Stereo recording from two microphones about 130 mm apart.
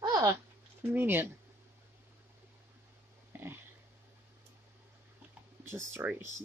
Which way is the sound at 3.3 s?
15° right (ahead or behind).